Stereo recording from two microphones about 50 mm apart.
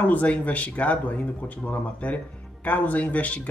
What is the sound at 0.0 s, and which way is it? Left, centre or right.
Speech, left.